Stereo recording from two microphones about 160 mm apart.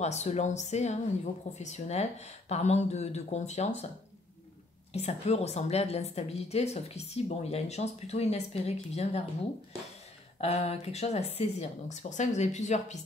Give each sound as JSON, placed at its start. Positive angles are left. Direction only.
{"t": 0.0, "sound": "speech", "side_deg": 45}
{"t": 4.9, "sound": "a woman's voice", "side_deg": 40}
{"t": 10.4, "sound": "speech", "side_deg": 40}